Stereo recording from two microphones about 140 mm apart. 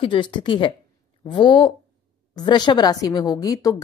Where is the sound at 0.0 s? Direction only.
35° left (ahead or behind).